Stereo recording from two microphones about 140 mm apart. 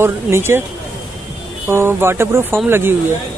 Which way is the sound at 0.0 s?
15° right (ahead or behind).